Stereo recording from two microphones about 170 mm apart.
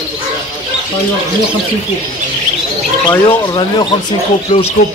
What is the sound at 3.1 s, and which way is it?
Speech, 25° left (ahead or behind).